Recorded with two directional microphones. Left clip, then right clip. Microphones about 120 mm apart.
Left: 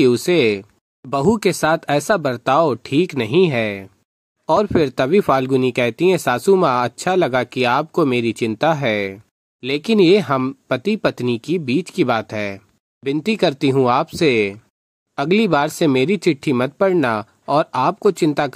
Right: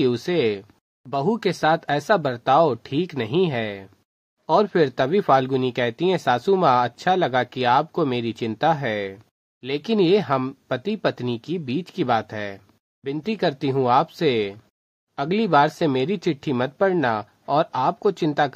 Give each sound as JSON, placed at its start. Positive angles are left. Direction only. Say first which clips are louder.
{"t": 0.0, "sound": "speech", "louder": "left 6 dB", "side_deg": 35}